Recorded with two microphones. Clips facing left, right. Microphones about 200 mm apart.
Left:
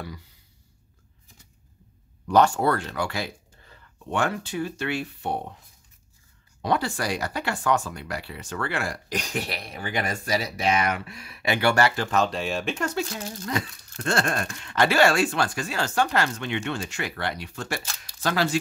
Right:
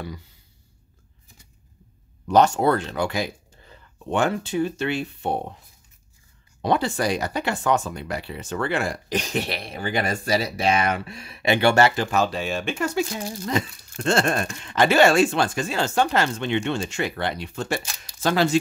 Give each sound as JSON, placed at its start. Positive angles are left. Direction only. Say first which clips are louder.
{"t": 2.2, "sound": "speech", "louder": "right 2 dB", "side_deg": -20}
{"t": 6.6, "sound": "speech", "louder": "right 4 dB", "side_deg": -20}
{"t": 12.1, "sound": "speech", "louder": "right 1 dB", "side_deg": -5}
{"t": 13.5, "sound": "speech", "louder": "right 4 dB", "side_deg": -25}